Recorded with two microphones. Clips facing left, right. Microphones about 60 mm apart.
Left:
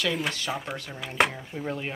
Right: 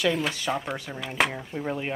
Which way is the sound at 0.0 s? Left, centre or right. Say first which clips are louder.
Right 3 dB; centre.